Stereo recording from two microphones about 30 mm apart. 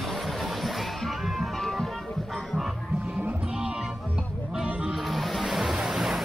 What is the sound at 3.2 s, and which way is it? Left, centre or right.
Music, right.